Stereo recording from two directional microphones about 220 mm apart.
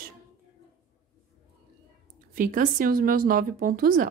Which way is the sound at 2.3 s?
40° right (ahead or behind).